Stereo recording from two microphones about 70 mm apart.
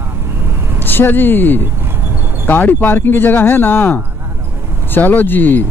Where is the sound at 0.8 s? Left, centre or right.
Left.